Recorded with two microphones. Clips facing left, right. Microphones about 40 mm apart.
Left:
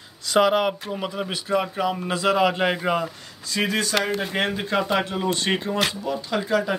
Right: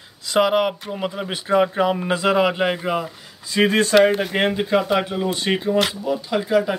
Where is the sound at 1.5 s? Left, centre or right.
Right.